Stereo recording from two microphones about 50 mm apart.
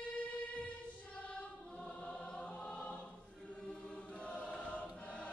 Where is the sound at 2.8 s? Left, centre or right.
Left.